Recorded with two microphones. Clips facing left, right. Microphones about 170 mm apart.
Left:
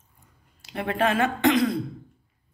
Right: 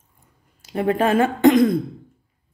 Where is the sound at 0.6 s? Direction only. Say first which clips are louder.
Right 5 dB; 40° right (ahead or behind).